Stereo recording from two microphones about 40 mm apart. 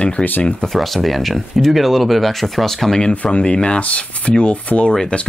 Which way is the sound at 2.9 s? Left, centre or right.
Left.